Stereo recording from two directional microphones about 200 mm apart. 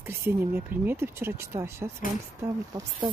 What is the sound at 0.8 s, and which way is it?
Speech, 10° right (ahead or behind).